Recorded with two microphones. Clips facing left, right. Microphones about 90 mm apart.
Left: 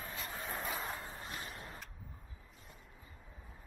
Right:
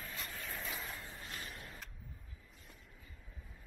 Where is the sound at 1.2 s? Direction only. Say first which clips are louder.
Left 2 dB; 30° left (ahead or behind).